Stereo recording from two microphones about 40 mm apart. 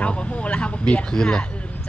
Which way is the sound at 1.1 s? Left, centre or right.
Centre.